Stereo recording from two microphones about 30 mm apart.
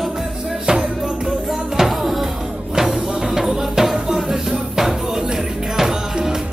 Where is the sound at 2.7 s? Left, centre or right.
Centre.